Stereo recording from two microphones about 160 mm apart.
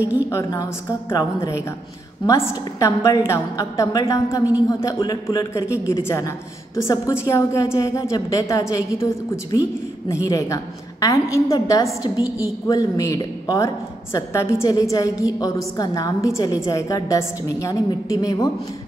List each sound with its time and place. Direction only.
0.3 s a woman's voice: 20° left (ahead or behind)